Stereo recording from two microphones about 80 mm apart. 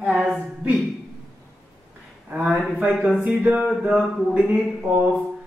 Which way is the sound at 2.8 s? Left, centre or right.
Centre.